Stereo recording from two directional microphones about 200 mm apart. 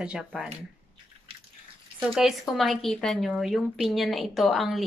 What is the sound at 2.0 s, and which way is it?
A woman's voice, centre (ahead or behind).